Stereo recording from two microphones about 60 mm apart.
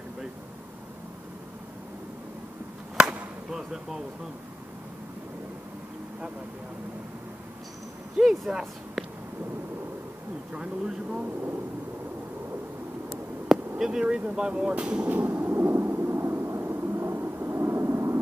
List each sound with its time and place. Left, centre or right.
3.0 s chop: right
3.4 s a sound: centre
8.2 s speech: centre
10.5 s speech: centre
13.5 s speech: centre
15.0 s vehicle: right
16.6 s a sound: right